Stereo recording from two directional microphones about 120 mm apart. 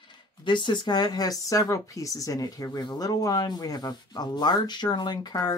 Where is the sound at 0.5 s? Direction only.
40° left (ahead or behind).